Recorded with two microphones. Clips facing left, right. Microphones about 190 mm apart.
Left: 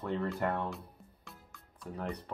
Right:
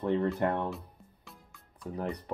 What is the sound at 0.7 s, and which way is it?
Music, centre (ahead or behind).